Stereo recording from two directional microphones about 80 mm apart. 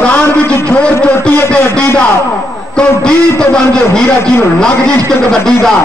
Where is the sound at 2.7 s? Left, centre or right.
Centre.